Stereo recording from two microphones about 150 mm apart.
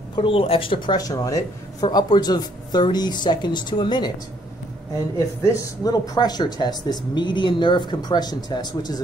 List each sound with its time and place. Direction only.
0.1 s speech: 35° left (ahead or behind)
5.5 s speech: 25° left (ahead or behind)